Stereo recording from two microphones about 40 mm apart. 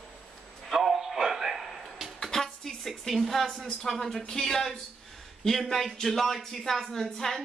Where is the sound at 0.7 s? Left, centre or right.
Centre.